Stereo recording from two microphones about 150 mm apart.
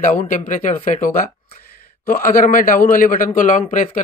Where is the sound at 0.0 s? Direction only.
60° left (ahead or behind).